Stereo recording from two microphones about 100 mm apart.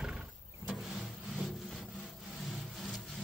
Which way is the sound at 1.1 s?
10° right (ahead or behind).